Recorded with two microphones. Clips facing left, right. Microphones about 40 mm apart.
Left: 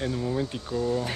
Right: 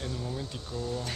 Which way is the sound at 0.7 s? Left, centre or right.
Left.